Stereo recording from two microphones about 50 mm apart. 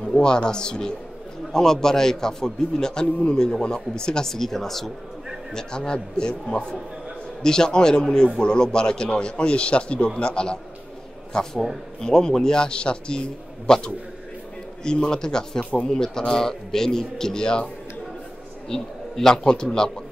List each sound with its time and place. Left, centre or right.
0.0 s a man's voice: centre
15.7 s a man's voice: left
16.0 s a man's voice: centre
18.7 s a man's voice: centre